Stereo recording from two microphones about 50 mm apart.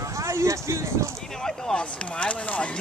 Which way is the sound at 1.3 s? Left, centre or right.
Centre.